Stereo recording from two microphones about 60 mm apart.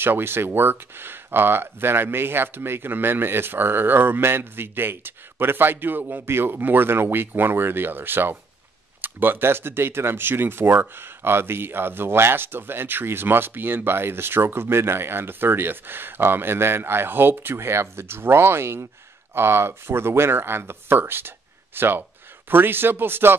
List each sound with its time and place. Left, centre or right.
0.0 s speech: right